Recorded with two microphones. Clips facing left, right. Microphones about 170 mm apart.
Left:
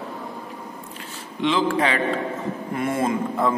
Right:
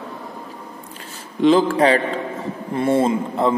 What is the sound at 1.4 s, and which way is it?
A man's voice, 40° right (ahead or behind).